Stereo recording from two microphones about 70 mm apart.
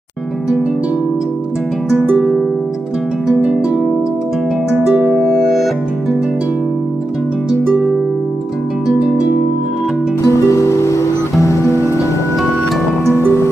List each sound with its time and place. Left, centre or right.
2.0 s harp: centre
3.3 s music: centre
4.8 s harp: centre
10.2 s music: left
13.1 s music: left